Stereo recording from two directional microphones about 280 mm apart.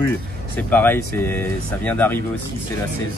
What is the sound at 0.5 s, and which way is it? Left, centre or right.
Speech, centre.